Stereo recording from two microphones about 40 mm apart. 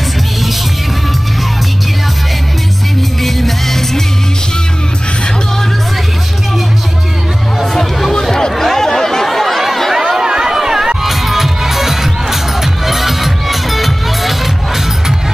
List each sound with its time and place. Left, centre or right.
3.2 s music: centre
7.7 s chatter: centre
9.9 s chatter: centre
10.5 s crowd: centre
11.1 s music: centre